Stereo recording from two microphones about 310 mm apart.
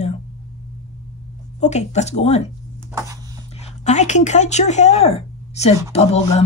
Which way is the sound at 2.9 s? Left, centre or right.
Centre.